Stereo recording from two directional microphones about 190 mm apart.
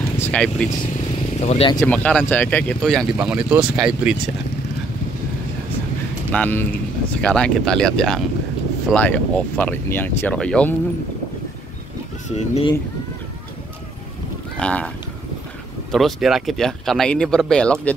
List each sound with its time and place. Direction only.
0.2 s speech: 5° left (ahead or behind)
1.4 s speech: 35° left (ahead or behind)
1.8 s speech: 5° left (ahead or behind)
6.3 s speech: 10° left (ahead or behind)
12.3 s speech: 35° left (ahead or behind)
14.6 s speech: 5° left (ahead or behind)
15.9 s speech: centre (ahead or behind)